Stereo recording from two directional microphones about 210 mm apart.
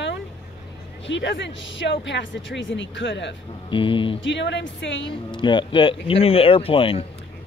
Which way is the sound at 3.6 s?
25° left (ahead or behind).